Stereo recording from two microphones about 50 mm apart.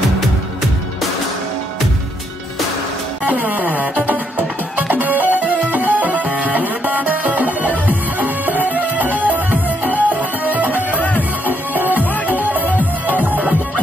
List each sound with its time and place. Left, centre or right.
3.3 s music: right
11.0 s music: left
11.7 s music: right